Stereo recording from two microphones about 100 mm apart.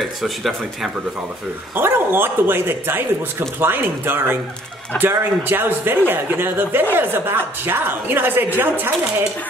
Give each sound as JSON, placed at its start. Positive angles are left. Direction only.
{"t": 0.0, "sound": "speech", "side_deg": 0}
{"t": 1.8, "sound": "speech", "side_deg": -20}